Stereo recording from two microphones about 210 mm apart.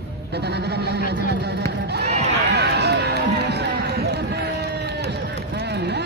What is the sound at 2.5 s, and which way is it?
Run, 55° right (ahead or behind).